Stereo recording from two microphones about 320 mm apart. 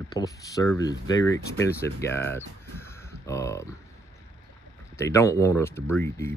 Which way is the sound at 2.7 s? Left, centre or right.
Centre.